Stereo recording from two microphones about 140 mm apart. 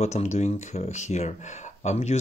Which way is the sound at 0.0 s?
55° left (ahead or behind).